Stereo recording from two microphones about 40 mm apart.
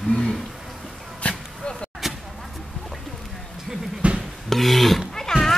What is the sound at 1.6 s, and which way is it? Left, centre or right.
Vehicle, centre.